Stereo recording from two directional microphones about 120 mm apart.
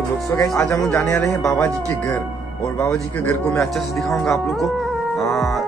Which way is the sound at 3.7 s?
Centre (ahead or behind).